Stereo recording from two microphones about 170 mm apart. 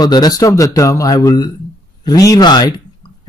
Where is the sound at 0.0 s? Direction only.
25° left (ahead or behind).